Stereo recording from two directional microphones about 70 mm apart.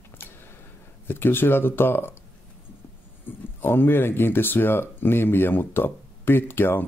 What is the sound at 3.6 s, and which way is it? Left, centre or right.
Speech, left.